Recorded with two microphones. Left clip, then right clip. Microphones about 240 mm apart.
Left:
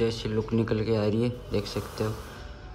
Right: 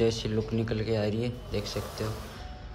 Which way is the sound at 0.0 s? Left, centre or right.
Centre.